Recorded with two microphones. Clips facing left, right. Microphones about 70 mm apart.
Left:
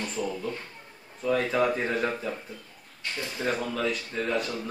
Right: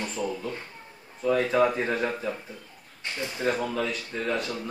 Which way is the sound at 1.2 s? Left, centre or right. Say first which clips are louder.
Right 2 dB; centre.